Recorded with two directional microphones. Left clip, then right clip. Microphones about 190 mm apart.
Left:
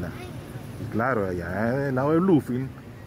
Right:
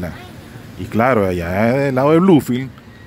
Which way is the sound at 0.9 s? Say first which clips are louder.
Right 10 dB; 25° right (ahead or behind).